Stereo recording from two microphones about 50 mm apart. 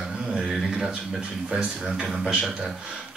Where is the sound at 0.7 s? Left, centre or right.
Centre.